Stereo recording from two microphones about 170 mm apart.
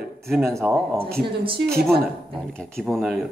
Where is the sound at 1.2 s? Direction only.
30° right (ahead or behind).